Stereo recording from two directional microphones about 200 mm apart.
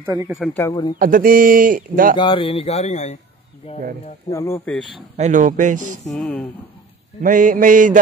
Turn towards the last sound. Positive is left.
turn(degrees=-40)  # may be behind; listen again after turning